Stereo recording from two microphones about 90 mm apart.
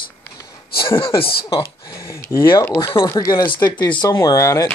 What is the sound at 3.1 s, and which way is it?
Speech, 40° left (ahead or behind).